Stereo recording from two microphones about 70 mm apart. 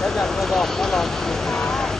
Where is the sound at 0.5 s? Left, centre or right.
Centre.